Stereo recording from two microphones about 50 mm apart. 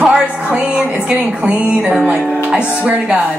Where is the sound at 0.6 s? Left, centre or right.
Centre.